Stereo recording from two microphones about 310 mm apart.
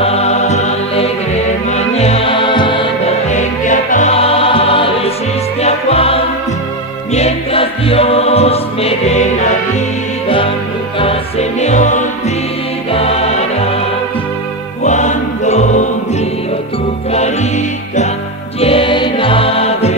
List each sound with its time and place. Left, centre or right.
0.0 s music: centre
14.8 s music: left
17.1 s music: left
18.6 s music: centre